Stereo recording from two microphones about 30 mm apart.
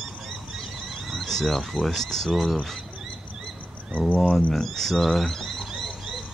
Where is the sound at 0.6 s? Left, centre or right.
Centre.